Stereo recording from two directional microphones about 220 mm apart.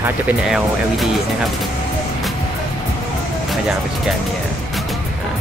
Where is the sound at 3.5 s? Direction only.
Centre (ahead or behind).